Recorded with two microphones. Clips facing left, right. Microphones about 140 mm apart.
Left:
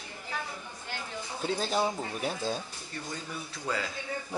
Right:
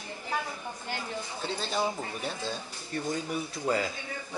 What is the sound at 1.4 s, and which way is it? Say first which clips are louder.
Speech: left 5 dB; 45° left (ahead or behind).